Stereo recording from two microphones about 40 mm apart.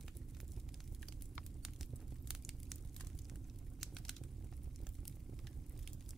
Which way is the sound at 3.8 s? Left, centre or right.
Centre.